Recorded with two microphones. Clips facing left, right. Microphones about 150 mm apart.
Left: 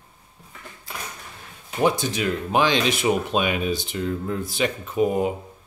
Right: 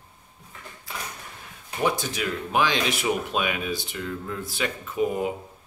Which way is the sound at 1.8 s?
25° left (ahead or behind).